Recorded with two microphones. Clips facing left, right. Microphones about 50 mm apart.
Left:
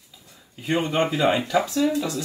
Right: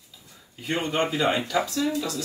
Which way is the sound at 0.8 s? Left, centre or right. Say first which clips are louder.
Left 2 dB; centre.